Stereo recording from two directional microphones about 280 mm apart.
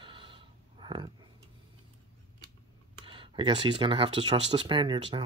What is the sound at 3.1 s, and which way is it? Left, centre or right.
Speech, centre.